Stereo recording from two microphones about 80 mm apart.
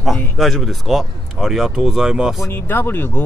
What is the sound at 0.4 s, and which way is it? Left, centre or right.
Speech, centre.